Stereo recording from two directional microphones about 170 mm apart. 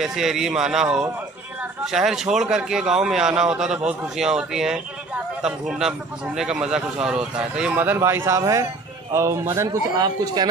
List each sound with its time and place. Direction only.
0.0 s a man's voice: centre (ahead or behind); by 10.5 s 25° right (ahead or behind)